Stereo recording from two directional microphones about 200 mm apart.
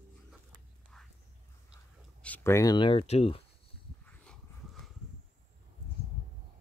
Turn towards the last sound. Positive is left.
turn(degrees=5)  # may be behind; listen again after turning